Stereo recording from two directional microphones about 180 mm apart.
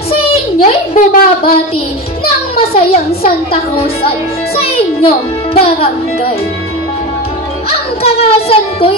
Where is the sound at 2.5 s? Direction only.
35° left (ahead or behind).